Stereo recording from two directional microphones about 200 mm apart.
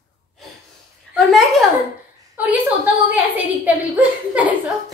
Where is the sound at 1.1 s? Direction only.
Centre (ahead or behind).